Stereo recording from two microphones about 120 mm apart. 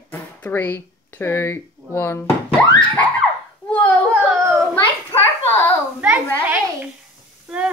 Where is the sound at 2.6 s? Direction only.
10° left (ahead or behind).